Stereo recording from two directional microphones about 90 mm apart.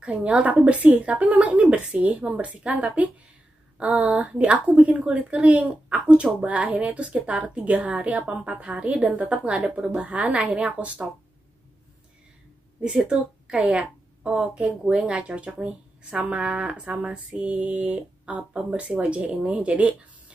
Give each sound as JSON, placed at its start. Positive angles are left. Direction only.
{"t": 0.0, "sound": "a woman's voice", "side_deg": -10}
{"t": 12.8, "sound": "a woman's voice", "side_deg": -15}